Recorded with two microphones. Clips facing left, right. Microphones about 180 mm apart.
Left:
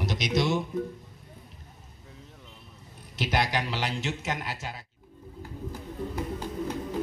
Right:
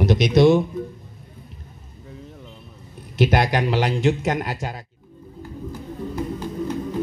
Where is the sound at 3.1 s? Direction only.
55° right (ahead or behind).